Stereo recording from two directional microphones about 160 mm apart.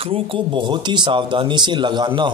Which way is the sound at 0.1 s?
30° right (ahead or behind).